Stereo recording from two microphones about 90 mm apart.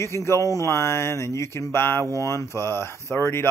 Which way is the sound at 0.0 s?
30° left (ahead or behind).